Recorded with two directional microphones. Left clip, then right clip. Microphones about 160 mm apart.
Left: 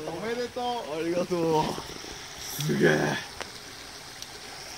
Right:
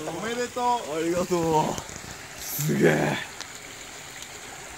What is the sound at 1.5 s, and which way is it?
Speech, 50° right (ahead or behind).